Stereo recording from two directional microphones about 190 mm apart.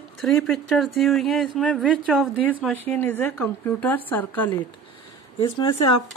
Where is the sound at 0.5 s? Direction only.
Centre (ahead or behind).